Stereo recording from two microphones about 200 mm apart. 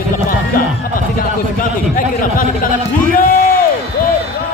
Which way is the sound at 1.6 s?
45° left (ahead or behind).